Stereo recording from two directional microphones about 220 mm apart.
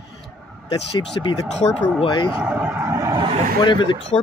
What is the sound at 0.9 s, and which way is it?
Speech, 25° left (ahead or behind).